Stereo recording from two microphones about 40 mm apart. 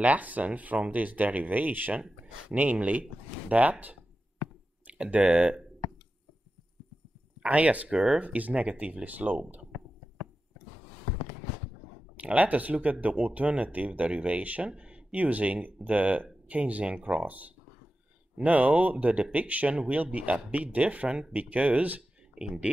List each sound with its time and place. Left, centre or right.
0.0 s speech: right
4.9 s speech: right
7.4 s speech: right
12.2 s speech: right
14.7 s a sound: right
15.2 s speech: right
22.4 s speech: centre